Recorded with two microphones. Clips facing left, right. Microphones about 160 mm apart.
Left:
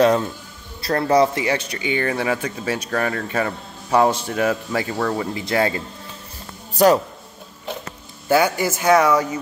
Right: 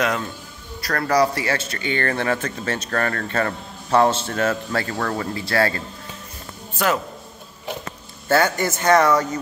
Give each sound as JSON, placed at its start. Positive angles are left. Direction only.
{"t": 0.0, "sound": "speech", "side_deg": 30}
{"t": 6.7, "sound": "a sound", "side_deg": 35}
{"t": 8.3, "sound": "speech", "side_deg": 10}